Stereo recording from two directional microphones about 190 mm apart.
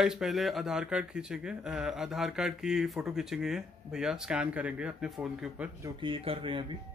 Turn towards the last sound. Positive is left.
turn(degrees=-25)  # may be behind; listen again after turning